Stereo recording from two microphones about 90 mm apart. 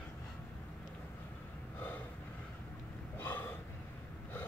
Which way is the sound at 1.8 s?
20° left (ahead or behind).